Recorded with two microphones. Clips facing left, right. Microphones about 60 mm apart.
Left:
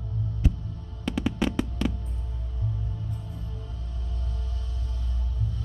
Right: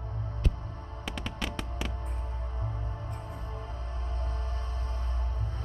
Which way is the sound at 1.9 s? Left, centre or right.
Right.